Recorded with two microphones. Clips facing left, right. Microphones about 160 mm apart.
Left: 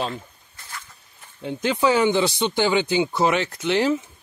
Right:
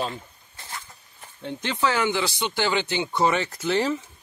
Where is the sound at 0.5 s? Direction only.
25° right (ahead or behind).